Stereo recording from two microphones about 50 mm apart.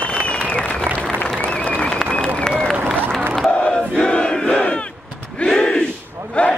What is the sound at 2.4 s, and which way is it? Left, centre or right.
Applause, centre.